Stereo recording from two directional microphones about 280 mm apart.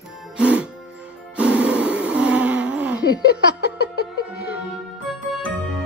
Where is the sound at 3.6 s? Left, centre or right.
Left.